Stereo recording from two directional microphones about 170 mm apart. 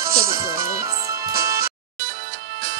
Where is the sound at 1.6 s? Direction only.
70° right (ahead or behind).